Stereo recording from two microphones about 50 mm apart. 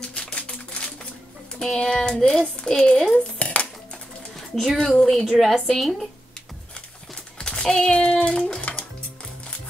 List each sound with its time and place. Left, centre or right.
0.0 s a sound: left
1.6 s speech: centre
3.3 s dishes: left
4.4 s a woman's voice: centre
7.3 s a sound: centre
8.5 s music: left